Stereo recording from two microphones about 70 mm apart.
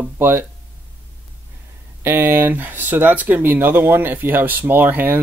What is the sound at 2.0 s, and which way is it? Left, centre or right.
Speech, right.